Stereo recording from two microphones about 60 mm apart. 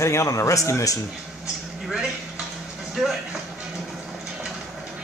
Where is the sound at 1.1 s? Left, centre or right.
Centre.